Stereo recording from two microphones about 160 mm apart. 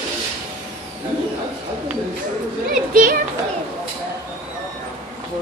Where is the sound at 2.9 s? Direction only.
60° right (ahead or behind).